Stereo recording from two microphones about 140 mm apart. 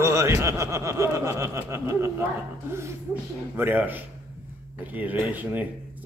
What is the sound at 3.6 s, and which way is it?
Speech, 15° right (ahead or behind).